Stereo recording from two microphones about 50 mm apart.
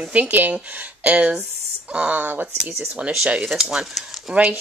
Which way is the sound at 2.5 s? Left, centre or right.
Centre.